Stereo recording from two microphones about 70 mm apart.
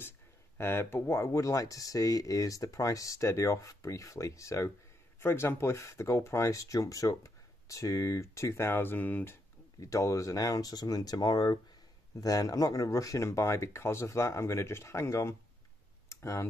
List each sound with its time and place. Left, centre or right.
0.6 s speech: left
5.2 s speech: left
8.7 s speech: left
9.8 s speech: left
12.2 s speech: left
16.1 s clicking: left